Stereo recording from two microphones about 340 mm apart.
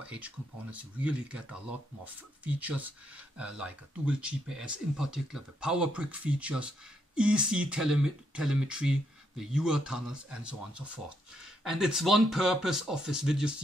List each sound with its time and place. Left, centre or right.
0.0 s speech: centre